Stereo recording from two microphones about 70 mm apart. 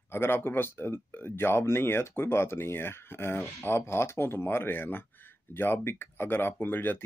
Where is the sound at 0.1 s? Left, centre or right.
Left.